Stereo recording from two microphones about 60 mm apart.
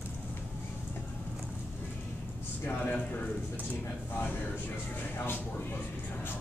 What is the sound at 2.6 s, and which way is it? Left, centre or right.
Speech, left.